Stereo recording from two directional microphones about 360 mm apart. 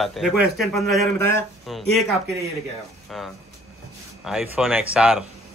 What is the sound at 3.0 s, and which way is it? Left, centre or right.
A man's voice, centre.